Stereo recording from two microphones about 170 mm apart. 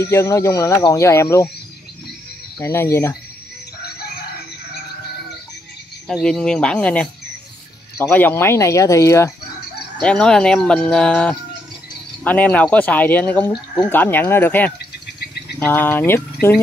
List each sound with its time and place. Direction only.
0.0 s speech: 15° left (ahead or behind)
2.6 s speech: 15° left (ahead or behind)
6.0 s speech: 5° left (ahead or behind)
10.0 s speech: 5° left (ahead or behind)